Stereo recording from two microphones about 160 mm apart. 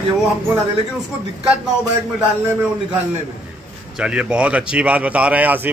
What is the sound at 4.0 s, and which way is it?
Speech, 5° right (ahead or behind).